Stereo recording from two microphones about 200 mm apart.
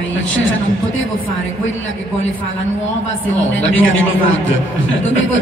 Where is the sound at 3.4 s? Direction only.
70° left (ahead or behind).